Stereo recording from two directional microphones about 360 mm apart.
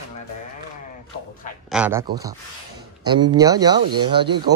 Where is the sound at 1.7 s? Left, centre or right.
Centre.